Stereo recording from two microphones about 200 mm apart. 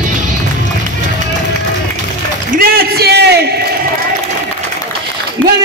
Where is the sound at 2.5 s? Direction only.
50° right (ahead or behind).